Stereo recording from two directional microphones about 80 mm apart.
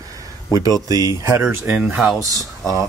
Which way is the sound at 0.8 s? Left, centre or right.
Right.